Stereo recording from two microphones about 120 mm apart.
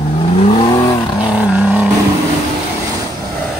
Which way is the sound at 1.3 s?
10° right (ahead or behind).